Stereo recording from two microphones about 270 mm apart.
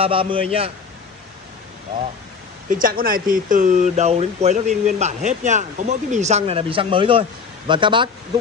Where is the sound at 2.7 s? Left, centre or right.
Right.